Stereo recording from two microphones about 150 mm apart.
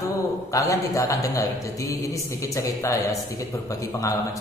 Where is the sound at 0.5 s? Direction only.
20° left (ahead or behind).